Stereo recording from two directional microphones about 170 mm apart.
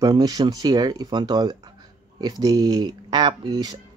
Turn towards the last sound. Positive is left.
turn(degrees=-25)  # may be behind; listen again after turning